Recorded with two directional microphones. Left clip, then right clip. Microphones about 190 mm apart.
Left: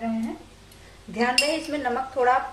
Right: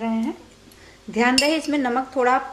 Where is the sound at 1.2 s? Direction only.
45° right (ahead or behind).